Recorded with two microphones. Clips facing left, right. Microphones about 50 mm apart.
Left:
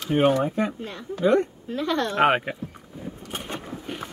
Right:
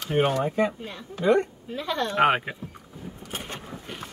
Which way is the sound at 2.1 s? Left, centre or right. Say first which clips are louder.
Even; centre.